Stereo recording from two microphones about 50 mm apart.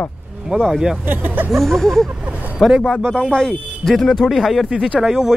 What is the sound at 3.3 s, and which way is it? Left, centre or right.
Speech, centre.